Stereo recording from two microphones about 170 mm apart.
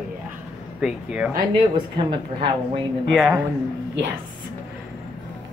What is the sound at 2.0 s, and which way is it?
Speech, 30° right (ahead or behind).